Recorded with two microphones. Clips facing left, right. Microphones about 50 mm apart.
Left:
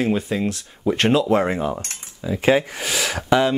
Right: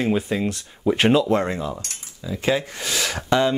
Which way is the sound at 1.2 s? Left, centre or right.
Centre.